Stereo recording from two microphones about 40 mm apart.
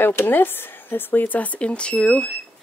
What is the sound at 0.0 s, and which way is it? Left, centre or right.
Speech, left.